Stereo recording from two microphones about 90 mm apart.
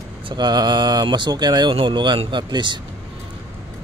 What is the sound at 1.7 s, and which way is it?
Speech, 60° right (ahead or behind).